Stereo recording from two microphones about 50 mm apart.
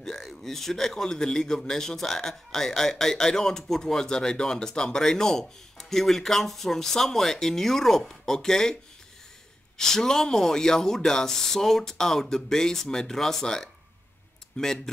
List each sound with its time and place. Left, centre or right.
0.0 s a man's voice: centre
9.8 s a man's voice: centre